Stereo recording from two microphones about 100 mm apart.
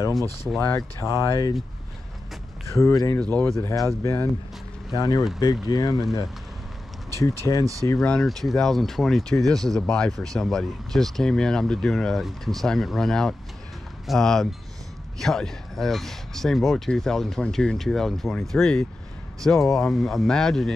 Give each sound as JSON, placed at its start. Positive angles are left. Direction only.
{"t": 0.7, "sound": "speech", "side_deg": 30}
{"t": 2.7, "sound": "speech", "side_deg": 30}
{"t": 3.2, "sound": "speech", "side_deg": 10}
{"t": 3.5, "sound": "speech", "side_deg": 30}
{"t": 4.9, "sound": "speech", "side_deg": 40}
{"t": 7.6, "sound": "speech", "side_deg": -35}
{"t": 8.0, "sound": "speech", "side_deg": 10}